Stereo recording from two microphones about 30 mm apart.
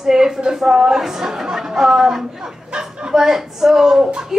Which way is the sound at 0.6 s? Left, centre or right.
Centre.